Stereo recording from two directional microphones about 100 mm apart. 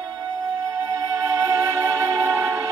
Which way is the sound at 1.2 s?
30° right (ahead or behind).